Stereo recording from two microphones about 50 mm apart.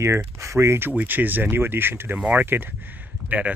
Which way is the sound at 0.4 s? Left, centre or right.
Right.